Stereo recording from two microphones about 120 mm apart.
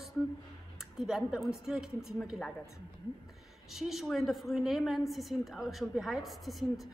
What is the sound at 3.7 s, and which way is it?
Speech, 5° right (ahead or behind).